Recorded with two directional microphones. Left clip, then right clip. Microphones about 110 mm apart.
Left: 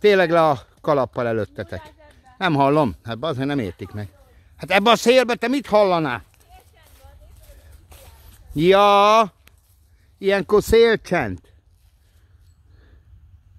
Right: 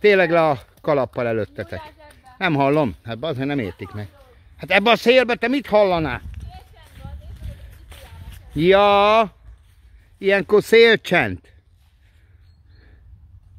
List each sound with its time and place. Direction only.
0.0 s speech: 30° left (ahead or behind)
2.0 s a sound: 5° left (ahead or behind)
2.3 s speech: 35° left (ahead or behind)
5.9 s speech: 45° left (ahead or behind)
6.8 s a sound: 20° right (ahead or behind)
8.5 s speech: 35° left (ahead or behind); by 11.0 s 15° left (ahead or behind)
11.1 s speech: 5° left (ahead or behind)